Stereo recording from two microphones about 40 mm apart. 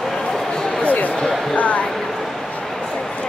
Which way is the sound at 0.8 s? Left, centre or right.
Left.